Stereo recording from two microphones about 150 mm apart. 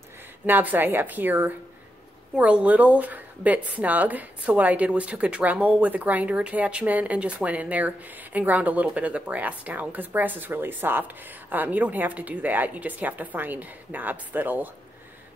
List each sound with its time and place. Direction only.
0.5 s a woman's voice: 10° right (ahead or behind)